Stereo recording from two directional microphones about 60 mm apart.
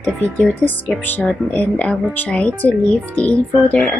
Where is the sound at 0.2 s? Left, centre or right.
Left.